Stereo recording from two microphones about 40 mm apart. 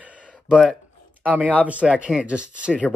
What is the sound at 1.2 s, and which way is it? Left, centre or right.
Speech, right.